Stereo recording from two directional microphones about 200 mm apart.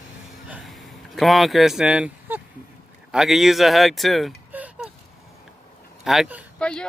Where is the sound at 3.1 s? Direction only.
Centre (ahead or behind).